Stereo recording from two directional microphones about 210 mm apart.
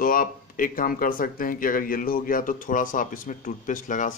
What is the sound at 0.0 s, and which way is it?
Speech, 40° left (ahead or behind).